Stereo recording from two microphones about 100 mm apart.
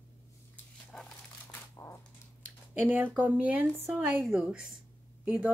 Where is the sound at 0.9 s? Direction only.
10° left (ahead or behind).